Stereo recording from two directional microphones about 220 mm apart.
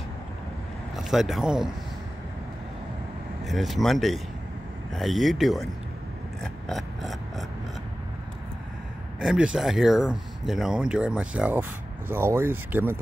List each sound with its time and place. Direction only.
0.9 s speech: centre (ahead or behind)
3.4 s speech: centre (ahead or behind)
6.4 s mechanisms: centre (ahead or behind)
9.2 s speech: 5° right (ahead or behind)